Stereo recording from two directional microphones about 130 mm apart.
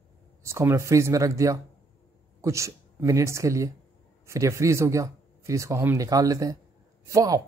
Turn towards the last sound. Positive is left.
turn(degrees=-25)  # may be behind; listen again after turning